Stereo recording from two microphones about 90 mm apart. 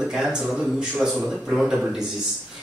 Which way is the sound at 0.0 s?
5° right (ahead or behind).